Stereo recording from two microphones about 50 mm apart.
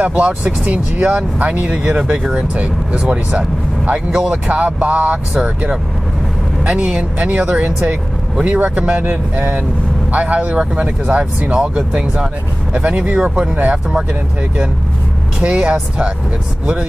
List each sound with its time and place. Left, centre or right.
0.0 s speech: right
6.6 s speech: centre
10.1 s speech: right
15.4 s speech: centre